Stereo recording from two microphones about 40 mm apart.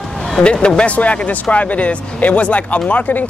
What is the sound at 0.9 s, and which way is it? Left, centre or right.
Speech, left.